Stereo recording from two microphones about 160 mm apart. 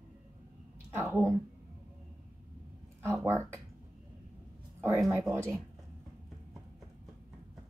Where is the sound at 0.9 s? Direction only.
15° right (ahead or behind).